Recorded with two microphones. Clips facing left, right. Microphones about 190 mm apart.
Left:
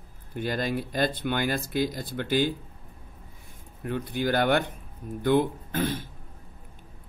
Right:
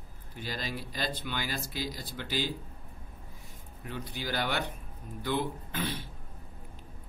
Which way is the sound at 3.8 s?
55° left (ahead or behind).